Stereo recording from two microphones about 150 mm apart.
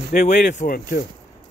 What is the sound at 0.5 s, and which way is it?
Speech, 75° left (ahead or behind).